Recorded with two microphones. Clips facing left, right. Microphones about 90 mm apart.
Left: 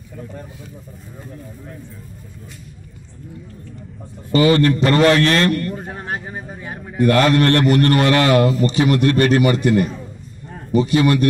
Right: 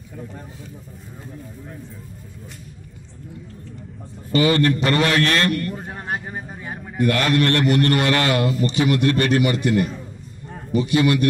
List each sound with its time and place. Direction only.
4.3 s a man's voice: 35° left (ahead or behind)
5.8 s a man's voice: centre (ahead or behind)
7.0 s a man's voice: 35° left (ahead or behind)